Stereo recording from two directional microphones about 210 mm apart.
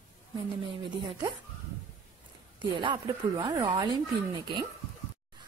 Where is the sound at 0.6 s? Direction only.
25° right (ahead or behind).